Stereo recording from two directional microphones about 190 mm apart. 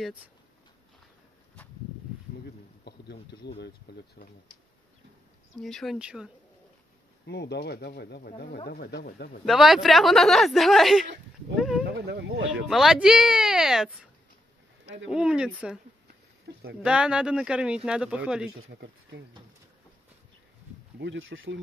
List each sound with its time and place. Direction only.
2.8 s a sound: 60° left (ahead or behind)
3.4 s speech: 60° left (ahead or behind)
5.6 s speech: centre (ahead or behind)
7.2 s speech: 60° left (ahead or behind)
9.5 s speech: centre (ahead or behind)
12.1 s speech: 65° right (ahead or behind)
12.6 s speech: centre (ahead or behind)
15.0 s speech: 5° right (ahead or behind)
16.8 s speech: 5° right (ahead or behind)
18.7 s speech: 60° right (ahead or behind)
21.0 s speech: 75° right (ahead or behind)